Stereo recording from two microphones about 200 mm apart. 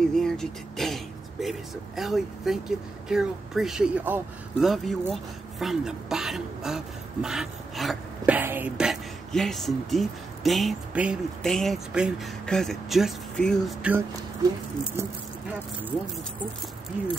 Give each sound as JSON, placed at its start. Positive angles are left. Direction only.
{"t": 0.1, "sound": "speech", "side_deg": 0}
{"t": 13.8, "sound": "speech", "side_deg": -10}